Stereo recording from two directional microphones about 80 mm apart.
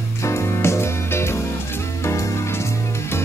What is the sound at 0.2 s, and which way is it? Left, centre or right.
Music, left.